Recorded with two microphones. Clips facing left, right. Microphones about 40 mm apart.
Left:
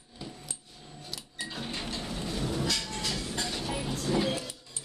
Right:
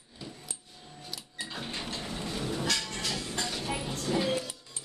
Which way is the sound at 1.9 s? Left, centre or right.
Centre.